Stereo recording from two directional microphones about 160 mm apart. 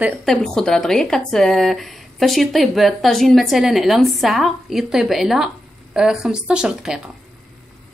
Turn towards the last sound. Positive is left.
turn(degrees=-5)  # may be behind; listen again after turning